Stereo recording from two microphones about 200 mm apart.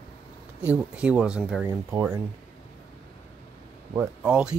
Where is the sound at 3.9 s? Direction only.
5° right (ahead or behind).